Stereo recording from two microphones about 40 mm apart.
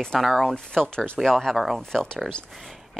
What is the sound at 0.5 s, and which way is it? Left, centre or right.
A woman's voice, centre.